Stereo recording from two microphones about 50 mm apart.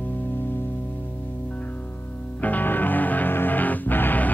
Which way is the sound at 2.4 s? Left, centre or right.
Left.